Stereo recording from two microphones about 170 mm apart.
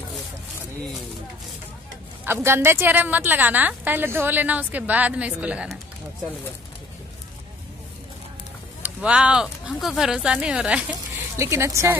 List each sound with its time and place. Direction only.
2.2 s a woman's voice: 15° right (ahead or behind)
8.8 s speech: 5° right (ahead or behind)
11.3 s a woman's voice: 15° right (ahead or behind)